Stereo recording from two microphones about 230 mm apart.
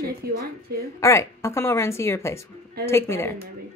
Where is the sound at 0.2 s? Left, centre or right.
Right.